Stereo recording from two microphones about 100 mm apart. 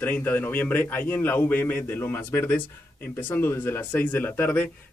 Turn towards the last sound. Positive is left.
turn(degrees=20)  # may be behind; listen again after turning